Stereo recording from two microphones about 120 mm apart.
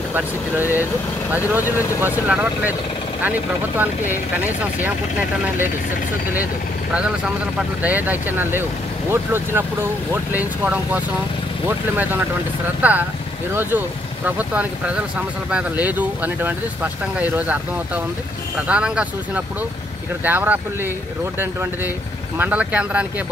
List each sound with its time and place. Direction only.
0.1 s speech: 15° right (ahead or behind)
7.8 s speech: 15° right (ahead or behind)
12.8 s speech: 10° right (ahead or behind)